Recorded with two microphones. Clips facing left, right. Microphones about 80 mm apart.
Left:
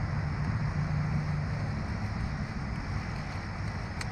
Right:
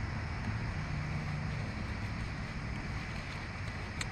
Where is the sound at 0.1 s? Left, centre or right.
Centre.